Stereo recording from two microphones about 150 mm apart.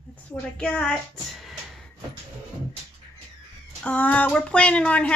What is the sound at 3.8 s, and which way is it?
Speech, 10° left (ahead or behind).